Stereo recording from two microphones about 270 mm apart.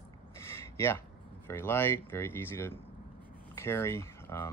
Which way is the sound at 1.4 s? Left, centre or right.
Centre.